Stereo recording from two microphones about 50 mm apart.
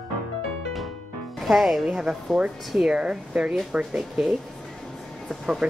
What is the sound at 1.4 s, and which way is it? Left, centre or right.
Speech, centre.